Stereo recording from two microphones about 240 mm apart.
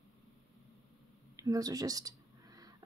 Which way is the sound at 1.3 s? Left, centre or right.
Centre.